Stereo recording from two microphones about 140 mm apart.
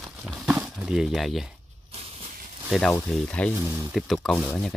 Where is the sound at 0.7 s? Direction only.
5° right (ahead or behind).